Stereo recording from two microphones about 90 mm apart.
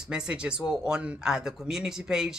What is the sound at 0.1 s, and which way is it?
Speech, 10° right (ahead or behind).